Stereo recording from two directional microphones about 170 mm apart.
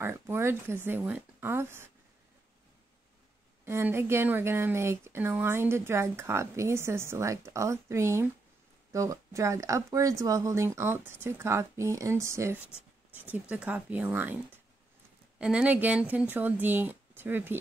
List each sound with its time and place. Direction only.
0.0 s speech: 15° right (ahead or behind)
3.6 s speech: 15° right (ahead or behind)